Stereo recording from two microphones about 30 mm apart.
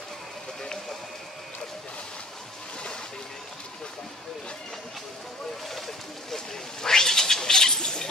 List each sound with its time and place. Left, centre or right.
6.3 s cat: centre